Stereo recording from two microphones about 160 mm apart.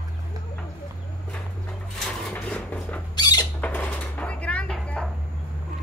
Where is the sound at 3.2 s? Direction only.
25° left (ahead or behind).